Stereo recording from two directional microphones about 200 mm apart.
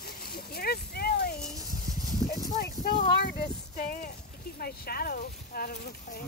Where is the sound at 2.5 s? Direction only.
50° left (ahead or behind).